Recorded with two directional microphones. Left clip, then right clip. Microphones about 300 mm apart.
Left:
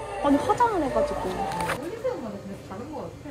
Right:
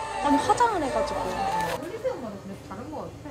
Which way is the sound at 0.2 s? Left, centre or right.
Centre.